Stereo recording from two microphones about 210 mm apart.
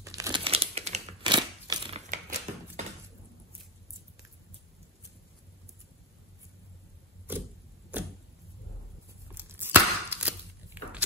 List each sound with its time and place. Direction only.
0.0 s crumpling: 15° right (ahead or behind); by 2.8 s 35° right (ahead or behind)
7.3 s vehicle: 10° right (ahead or behind)
9.3 s a sound: 10° right (ahead or behind)